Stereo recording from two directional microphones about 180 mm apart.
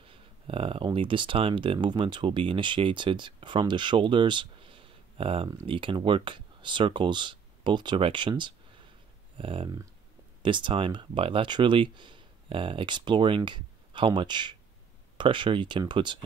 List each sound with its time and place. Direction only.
0.0 s speech: 30° right (ahead or behind)